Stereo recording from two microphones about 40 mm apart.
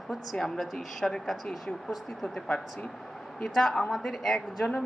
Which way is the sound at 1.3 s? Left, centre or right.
Centre.